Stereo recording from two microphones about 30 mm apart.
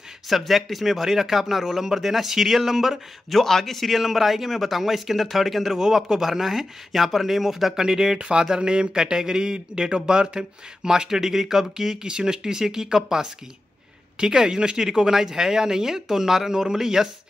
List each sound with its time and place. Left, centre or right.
0.3 s speech: centre
1.0 s a man's voice: centre
3.3 s speech: centre
3.9 s a man's voice: centre
8.2 s a man's voice: right; by 17.1 s centre